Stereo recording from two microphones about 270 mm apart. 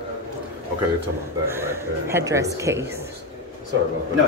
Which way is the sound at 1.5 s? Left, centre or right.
Centre.